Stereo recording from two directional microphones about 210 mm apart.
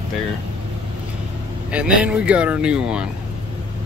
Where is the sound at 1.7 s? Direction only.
5° right (ahead or behind).